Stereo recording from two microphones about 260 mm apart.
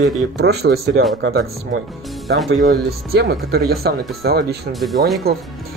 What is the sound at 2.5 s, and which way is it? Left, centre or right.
Speech, right.